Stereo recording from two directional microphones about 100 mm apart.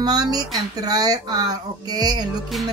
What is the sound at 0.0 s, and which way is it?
Speech, 40° right (ahead or behind).